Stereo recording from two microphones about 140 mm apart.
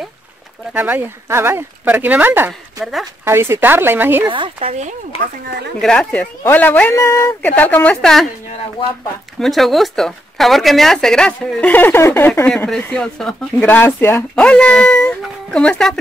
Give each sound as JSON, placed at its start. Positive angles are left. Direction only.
{"t": 0.7, "sound": "speech", "side_deg": -15}
{"t": 2.8, "sound": "speech", "side_deg": 0}
{"t": 3.3, "sound": "speech", "side_deg": -20}
{"t": 4.3, "sound": "speech", "side_deg": -40}
{"t": 5.8, "sound": "speech", "side_deg": 5}
{"t": 9.4, "sound": "speech", "side_deg": 0}
{"t": 14.3, "sound": "speech", "side_deg": 5}